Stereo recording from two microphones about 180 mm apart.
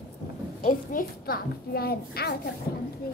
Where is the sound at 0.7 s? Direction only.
50° left (ahead or behind).